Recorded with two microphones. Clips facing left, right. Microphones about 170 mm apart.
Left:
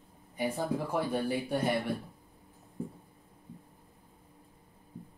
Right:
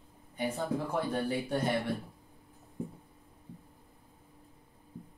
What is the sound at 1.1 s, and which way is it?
Speech, 10° left (ahead or behind).